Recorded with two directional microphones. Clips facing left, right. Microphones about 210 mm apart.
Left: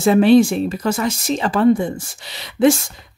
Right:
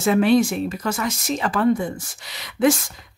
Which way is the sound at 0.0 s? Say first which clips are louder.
Left 5 dB; 30° left (ahead or behind).